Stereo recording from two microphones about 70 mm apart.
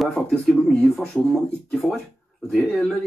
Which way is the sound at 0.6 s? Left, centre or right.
Centre.